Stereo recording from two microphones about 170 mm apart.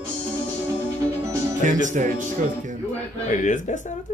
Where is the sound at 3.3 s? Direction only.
45° left (ahead or behind).